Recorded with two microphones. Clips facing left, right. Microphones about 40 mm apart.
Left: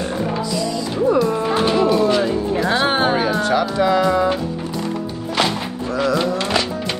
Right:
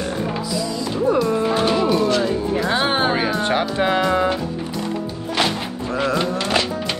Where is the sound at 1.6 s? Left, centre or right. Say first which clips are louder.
Left 5 dB; centre.